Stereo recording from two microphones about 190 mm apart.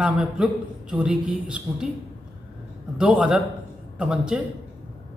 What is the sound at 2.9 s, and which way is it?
A man's voice, 5° right (ahead or behind).